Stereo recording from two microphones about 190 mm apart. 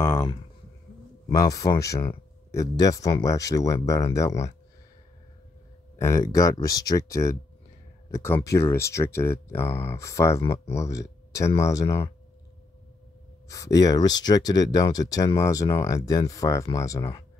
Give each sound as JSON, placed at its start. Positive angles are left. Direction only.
{"t": 0.0, "sound": "a sound", "side_deg": 15}
{"t": 1.3, "sound": "speech", "side_deg": 20}
{"t": 5.9, "sound": "speech", "side_deg": 15}
{"t": 10.3, "sound": "speech", "side_deg": 35}
{"t": 10.6, "sound": "speech", "side_deg": 15}
{"t": 13.5, "sound": "speech", "side_deg": 20}